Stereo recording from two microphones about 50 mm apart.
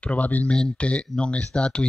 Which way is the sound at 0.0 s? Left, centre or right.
Left.